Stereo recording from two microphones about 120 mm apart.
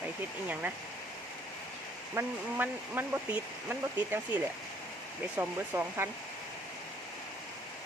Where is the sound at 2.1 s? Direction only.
15° right (ahead or behind).